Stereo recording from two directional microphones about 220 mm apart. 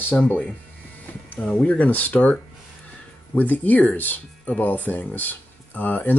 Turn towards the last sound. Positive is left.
turn(degrees=10)  # may be behind; listen again after turning